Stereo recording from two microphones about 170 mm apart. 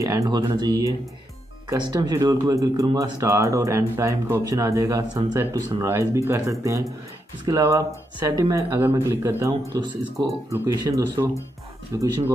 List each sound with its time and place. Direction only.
0.0 s speech: 20° right (ahead or behind)